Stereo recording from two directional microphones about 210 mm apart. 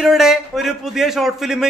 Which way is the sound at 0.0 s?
Centre (ahead or behind).